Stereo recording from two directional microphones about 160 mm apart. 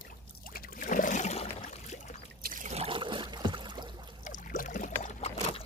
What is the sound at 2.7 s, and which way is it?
Boat, 35° right (ahead or behind).